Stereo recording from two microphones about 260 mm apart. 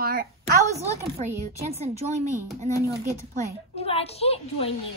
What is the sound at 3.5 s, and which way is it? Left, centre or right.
A woman's voice, left.